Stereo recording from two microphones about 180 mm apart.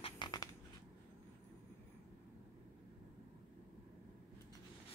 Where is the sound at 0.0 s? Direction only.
25° left (ahead or behind).